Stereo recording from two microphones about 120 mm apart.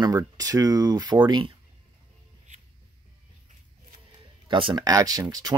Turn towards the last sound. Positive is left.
turn(degrees=-30)  # may be behind; listen again after turning